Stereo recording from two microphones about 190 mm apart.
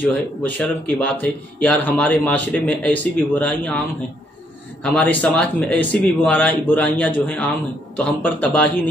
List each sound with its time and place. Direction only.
0.0 s speech: 10° left (ahead or behind)
4.8 s speech: 5° left (ahead or behind)